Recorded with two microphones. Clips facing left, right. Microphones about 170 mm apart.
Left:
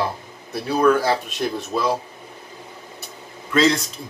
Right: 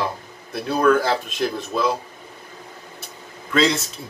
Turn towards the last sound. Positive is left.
turn(degrees=0)  # may be behind; listen again after turning